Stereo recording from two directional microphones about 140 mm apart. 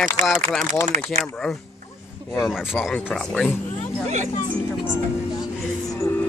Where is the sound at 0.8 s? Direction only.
65° right (ahead or behind).